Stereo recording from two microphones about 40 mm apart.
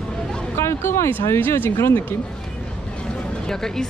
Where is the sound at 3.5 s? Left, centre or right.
Centre.